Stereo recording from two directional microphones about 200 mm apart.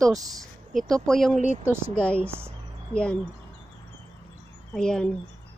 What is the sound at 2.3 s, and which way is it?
Speech, 10° right (ahead or behind).